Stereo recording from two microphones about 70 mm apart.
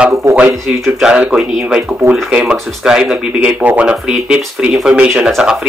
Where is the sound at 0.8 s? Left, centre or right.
Centre.